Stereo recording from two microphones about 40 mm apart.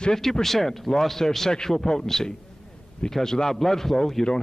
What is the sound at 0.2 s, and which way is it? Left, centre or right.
A man's voice, centre.